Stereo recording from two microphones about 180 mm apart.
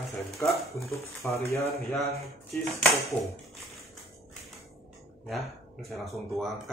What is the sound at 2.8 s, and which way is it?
Speech, centre (ahead or behind).